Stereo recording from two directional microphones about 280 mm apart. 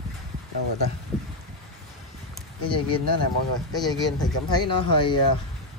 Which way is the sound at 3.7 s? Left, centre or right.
Centre.